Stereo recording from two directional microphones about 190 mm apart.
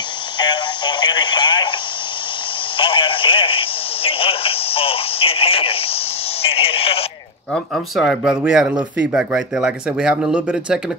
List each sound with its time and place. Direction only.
0.4 s speech: 25° left (ahead or behind)
2.8 s speech: 25° left (ahead or behind)
7.5 s speech: centre (ahead or behind)